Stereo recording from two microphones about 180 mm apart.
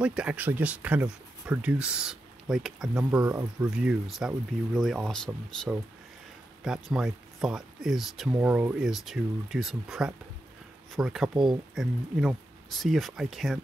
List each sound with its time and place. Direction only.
0.0 s speech: 5° right (ahead or behind)